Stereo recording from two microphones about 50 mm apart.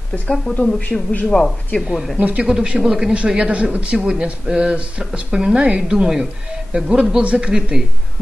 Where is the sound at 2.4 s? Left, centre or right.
Centre.